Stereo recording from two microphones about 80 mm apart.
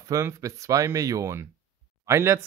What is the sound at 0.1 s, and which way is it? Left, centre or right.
Speech, right.